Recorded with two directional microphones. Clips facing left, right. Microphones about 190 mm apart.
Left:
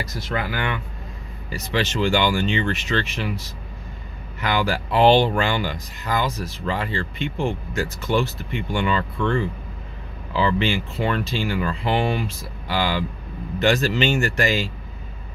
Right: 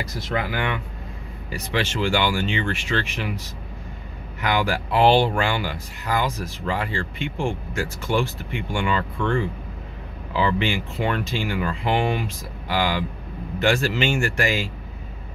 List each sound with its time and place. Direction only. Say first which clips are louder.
0.3 s speech: right 1 dB; 15° right (ahead or behind)